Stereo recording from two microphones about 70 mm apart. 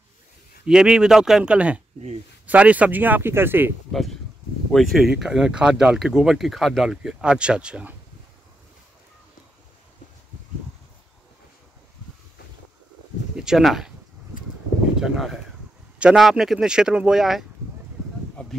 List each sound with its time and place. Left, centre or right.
0.7 s speech: centre; by 3.7 s right
3.9 s speech: centre
13.4 s speech: centre
15.0 s speech: centre
18.4 s a sound: centre